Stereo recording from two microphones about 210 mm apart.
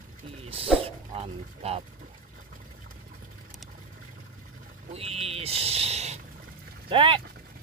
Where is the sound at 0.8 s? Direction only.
30° right (ahead or behind).